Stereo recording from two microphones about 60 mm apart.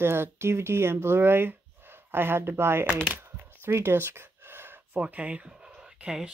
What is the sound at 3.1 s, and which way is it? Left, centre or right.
Gasp, right.